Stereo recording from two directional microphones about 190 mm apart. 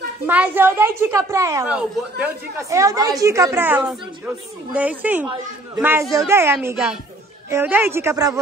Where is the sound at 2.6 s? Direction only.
15° right (ahead or behind).